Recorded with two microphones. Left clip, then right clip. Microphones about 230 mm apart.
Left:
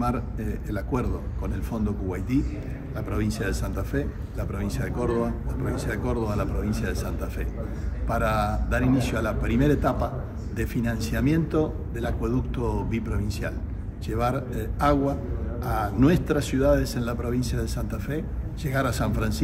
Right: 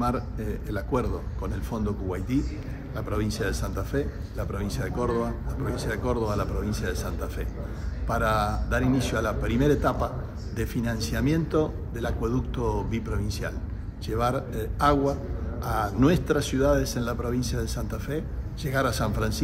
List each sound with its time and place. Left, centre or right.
0.0 s speech: centre
14.0 s speech: centre